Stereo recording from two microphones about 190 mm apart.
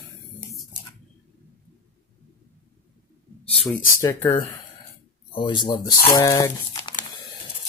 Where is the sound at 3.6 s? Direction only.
10° left (ahead or behind).